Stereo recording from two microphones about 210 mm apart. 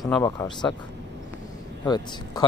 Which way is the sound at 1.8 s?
20° left (ahead or behind).